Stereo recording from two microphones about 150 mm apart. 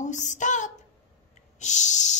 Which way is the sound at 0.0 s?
55° left (ahead or behind).